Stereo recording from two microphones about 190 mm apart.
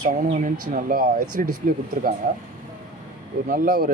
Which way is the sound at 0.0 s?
40° right (ahead or behind).